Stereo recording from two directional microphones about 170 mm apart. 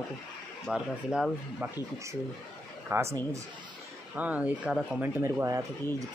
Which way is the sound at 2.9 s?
15° right (ahead or behind).